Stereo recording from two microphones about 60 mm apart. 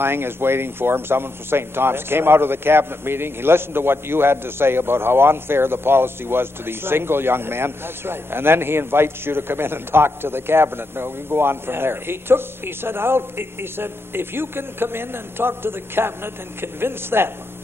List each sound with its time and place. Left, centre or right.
0.0 s speech: right